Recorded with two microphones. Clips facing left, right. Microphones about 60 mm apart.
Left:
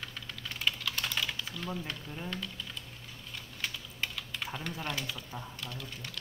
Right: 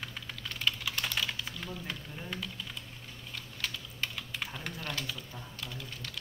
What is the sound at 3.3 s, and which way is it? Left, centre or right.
Typing, centre.